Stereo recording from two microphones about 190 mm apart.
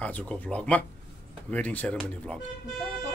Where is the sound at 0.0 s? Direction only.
5° left (ahead or behind).